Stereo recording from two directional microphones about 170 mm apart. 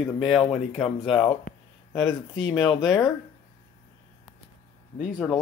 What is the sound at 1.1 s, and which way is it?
Speech, 30° left (ahead or behind).